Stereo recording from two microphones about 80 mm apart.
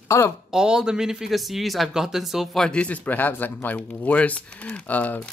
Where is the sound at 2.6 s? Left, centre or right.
Centre.